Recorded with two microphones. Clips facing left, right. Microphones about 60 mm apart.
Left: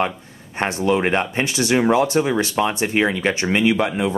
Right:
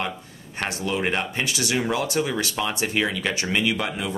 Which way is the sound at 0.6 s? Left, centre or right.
Left.